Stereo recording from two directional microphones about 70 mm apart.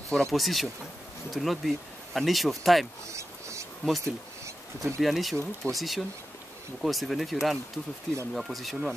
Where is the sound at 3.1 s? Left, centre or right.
Right.